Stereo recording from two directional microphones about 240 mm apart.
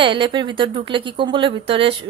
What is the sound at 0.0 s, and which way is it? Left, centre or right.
A woman's voice, right.